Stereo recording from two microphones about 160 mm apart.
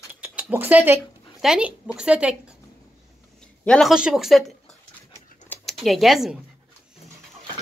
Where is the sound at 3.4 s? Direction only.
5° left (ahead or behind).